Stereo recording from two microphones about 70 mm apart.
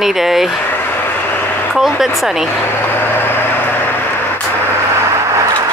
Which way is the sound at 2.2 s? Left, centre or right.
Centre.